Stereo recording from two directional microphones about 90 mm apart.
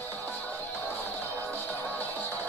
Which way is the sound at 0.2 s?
20° left (ahead or behind).